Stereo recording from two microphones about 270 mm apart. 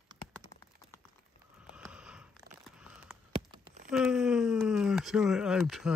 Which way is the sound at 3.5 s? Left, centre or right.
Centre.